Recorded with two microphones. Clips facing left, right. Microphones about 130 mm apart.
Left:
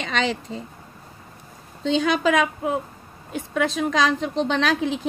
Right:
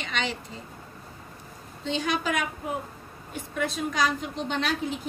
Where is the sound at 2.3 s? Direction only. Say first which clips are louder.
Left 8 dB; 90° left.